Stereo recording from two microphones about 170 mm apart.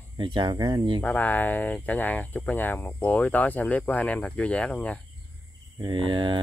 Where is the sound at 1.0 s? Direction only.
10° left (ahead or behind).